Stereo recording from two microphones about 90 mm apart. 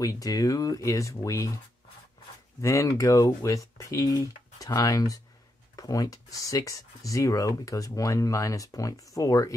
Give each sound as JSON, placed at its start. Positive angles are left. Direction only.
{"t": 0.0, "sound": "speech", "side_deg": 40}
{"t": 2.6, "sound": "speech", "side_deg": 35}